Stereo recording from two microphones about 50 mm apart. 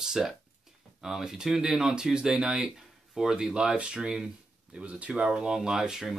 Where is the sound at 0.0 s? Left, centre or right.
Centre.